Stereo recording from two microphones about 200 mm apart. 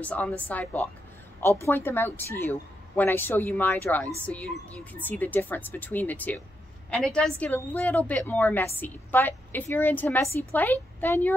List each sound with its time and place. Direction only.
0.0 s a woman's voice: 5° left (ahead or behind)